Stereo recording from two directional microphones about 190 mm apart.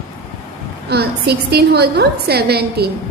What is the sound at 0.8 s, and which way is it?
A woman's voice, 60° right (ahead or behind).